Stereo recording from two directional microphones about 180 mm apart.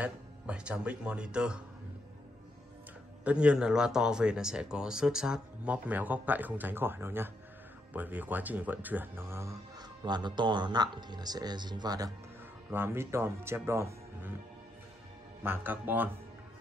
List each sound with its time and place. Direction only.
0.0 s speech: 5° right (ahead or behind)
3.3 s speech: 5° right (ahead or behind)
15.4 s speech: 10° right (ahead or behind)